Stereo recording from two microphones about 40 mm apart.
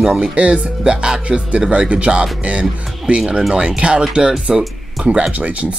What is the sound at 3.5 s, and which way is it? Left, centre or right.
Speech, right.